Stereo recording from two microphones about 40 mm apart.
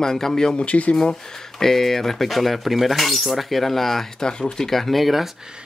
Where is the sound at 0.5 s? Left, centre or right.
Left.